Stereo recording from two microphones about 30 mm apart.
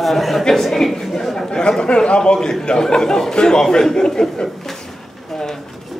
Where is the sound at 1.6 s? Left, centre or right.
Left.